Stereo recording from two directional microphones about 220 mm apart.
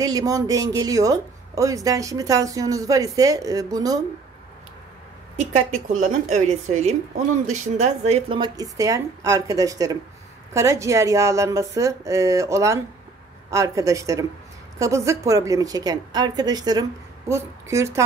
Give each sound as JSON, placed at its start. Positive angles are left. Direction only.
{"t": 0.0, "sound": "speech", "side_deg": -15}
{"t": 5.4, "sound": "a woman's voice", "side_deg": -30}